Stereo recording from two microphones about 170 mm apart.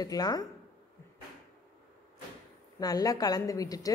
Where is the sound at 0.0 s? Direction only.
20° left (ahead or behind).